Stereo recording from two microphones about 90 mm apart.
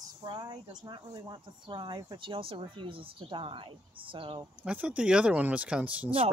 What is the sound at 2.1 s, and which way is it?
Speech, 75° right (ahead or behind).